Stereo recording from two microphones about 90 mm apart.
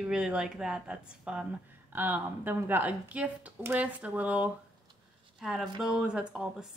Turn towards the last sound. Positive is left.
turn(degrees=-10)  # may be behind; listen again after turning